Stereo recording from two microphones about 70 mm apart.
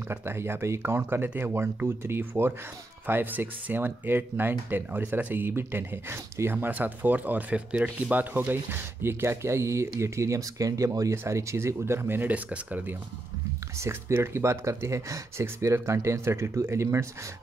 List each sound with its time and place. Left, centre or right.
0.1 s speech: right
13.7 s speech: right